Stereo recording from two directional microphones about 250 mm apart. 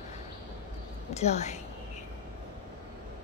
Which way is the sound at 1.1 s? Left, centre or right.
Left.